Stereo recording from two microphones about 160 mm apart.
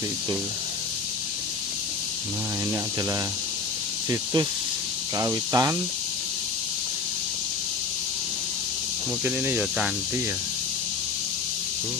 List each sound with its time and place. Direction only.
4.1 s speech: 25° right (ahead or behind)
9.2 s speech: 10° right (ahead or behind)